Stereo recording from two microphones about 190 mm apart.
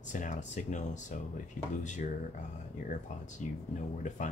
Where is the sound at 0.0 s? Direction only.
40° left (ahead or behind).